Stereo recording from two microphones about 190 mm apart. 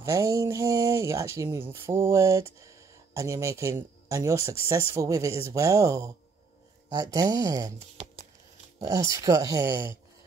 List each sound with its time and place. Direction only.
0.0 s speech: 15° right (ahead or behind)
8.8 s speech: 15° right (ahead or behind)